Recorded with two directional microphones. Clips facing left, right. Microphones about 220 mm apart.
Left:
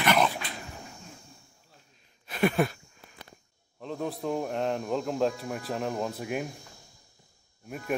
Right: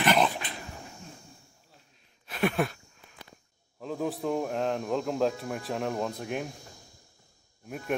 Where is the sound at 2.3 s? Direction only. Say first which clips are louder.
Left 2 dB; centre (ahead or behind).